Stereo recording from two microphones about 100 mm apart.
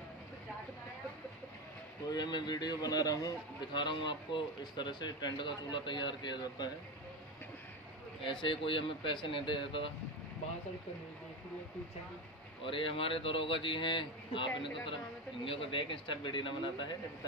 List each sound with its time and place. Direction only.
2.0 s a man's voice: 45° left (ahead or behind)
8.2 s a man's voice: 55° left (ahead or behind)
12.6 s a man's voice: 60° left (ahead or behind)